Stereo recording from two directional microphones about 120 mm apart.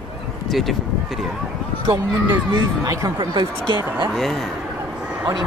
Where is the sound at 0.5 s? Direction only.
Centre (ahead or behind).